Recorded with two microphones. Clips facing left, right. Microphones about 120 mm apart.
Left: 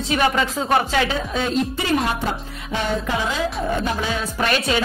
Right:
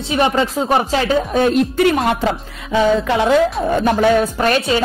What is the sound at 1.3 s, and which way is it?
Speech, 60° right (ahead or behind).